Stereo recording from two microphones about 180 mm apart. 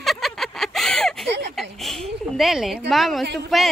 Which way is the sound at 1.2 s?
70° right (ahead or behind).